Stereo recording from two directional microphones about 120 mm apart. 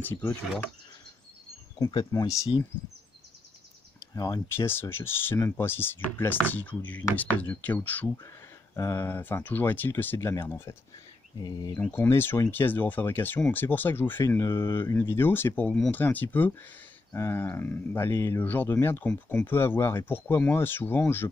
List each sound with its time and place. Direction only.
0.0 s speech: 15° left (ahead or behind)
2.1 s speech: 25° left (ahead or behind)
4.1 s speech: 30° left (ahead or behind)
11.3 s speech: 35° left (ahead or behind)
11.8 s speech: 15° left (ahead or behind)